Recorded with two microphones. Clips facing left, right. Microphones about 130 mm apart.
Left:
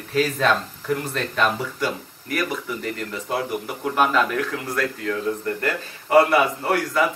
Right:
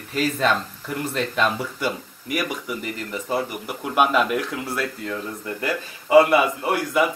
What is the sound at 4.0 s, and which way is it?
Speech, 10° right (ahead or behind).